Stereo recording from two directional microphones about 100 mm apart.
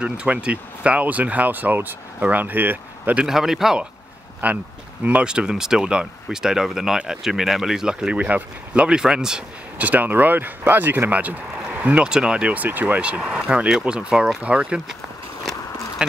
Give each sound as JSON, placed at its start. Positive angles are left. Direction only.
{"t": 0.0, "sound": "speech", "side_deg": -10}
{"t": 3.3, "sound": "a man's voice", "side_deg": -5}
{"t": 4.4, "sound": "speech", "side_deg": -15}
{"t": 16.0, "sound": "speech", "side_deg": -10}